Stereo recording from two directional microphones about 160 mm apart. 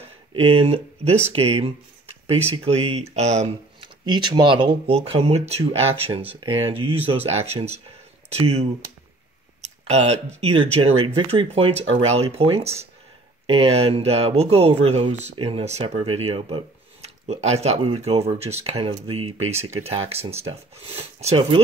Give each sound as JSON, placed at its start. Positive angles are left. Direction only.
{"t": 0.3, "sound": "speech", "side_deg": -35}
{"t": 3.8, "sound": "speech", "side_deg": -30}
{"t": 9.8, "sound": "speech", "side_deg": -40}